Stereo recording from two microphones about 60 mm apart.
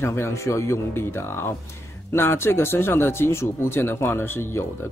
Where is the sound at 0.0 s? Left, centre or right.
Left.